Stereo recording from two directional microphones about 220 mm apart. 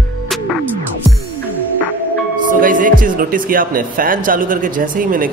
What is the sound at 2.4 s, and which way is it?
Speech, 40° right (ahead or behind).